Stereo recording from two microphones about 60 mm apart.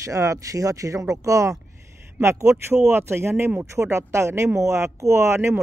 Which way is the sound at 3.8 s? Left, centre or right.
Right.